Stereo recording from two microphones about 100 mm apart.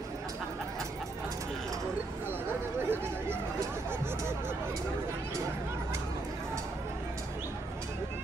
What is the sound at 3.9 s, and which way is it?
Hubbub, 25° right (ahead or behind).